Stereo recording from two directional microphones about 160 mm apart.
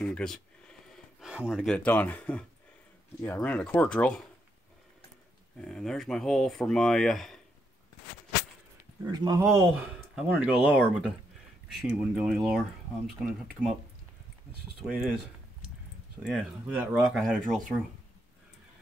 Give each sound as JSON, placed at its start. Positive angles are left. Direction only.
{"t": 0.0, "sound": "speech", "side_deg": 5}
{"t": 5.6, "sound": "speech", "side_deg": 5}
{"t": 9.0, "sound": "speech", "side_deg": -25}
{"t": 9.4, "sound": "speech", "side_deg": -15}
{"t": 14.8, "sound": "speech", "side_deg": -5}
{"t": 16.2, "sound": "speech", "side_deg": -5}
{"t": 17.1, "sound": "speech", "side_deg": 0}